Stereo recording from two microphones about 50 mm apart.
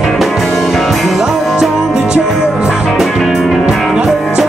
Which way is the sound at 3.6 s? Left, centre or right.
Centre.